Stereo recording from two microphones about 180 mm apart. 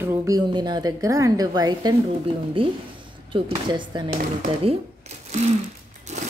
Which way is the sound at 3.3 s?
30° right (ahead or behind).